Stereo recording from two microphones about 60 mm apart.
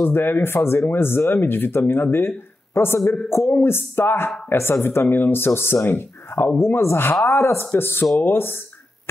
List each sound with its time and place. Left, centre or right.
0.0 s speech: left
7.2 s speech: left
7.8 s speech: left